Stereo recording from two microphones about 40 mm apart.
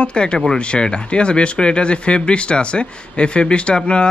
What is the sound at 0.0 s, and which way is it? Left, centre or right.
Speech, left.